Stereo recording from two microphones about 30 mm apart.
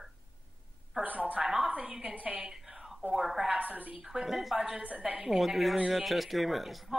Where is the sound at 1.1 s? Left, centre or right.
Right.